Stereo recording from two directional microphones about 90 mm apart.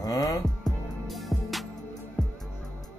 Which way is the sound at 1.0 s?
Centre (ahead or behind).